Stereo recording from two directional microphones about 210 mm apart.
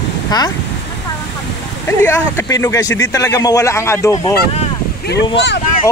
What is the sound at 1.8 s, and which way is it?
Speech, 10° left (ahead or behind).